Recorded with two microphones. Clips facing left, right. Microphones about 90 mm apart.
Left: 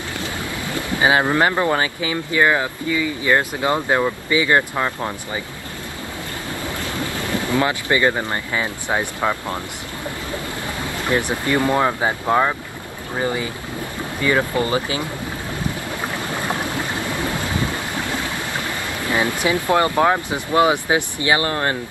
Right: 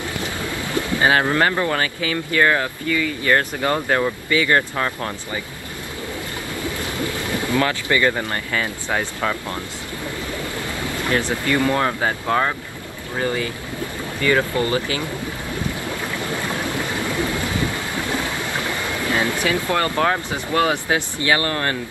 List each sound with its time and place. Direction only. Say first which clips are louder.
0.7 s speech: even; 20° left (ahead or behind)
7.2 s boat: left 1 dB; 20° right (ahead or behind)
7.4 s speech: even; 20° left (ahead or behind)
11.1 s speech: left 1 dB; 20° left (ahead or behind)
16.1 s boat: left 2 dB; 20° left (ahead or behind)
18.0 s a sound: right 1 dB; 20° right (ahead or behind)
19.1 s speech: left 2 dB; 20° left (ahead or behind)